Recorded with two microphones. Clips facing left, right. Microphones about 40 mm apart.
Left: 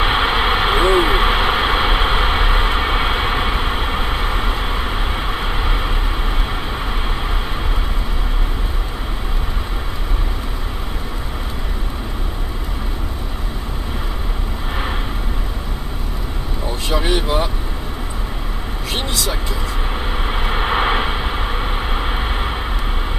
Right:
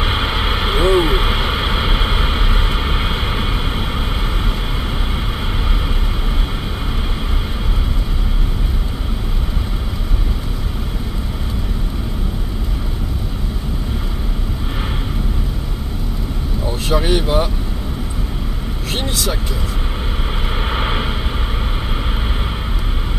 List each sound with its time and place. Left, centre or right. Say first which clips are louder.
0.0 s vehicle: left 3 dB; centre
16.9 s vehicle: right 2 dB; centre
20.4 s vehicle: left 4 dB; centre